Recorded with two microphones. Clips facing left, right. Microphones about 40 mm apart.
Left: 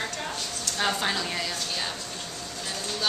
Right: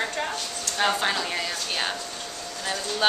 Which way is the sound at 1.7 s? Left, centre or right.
Right.